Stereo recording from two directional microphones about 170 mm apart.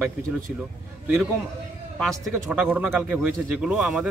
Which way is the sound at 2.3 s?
10° right (ahead or behind).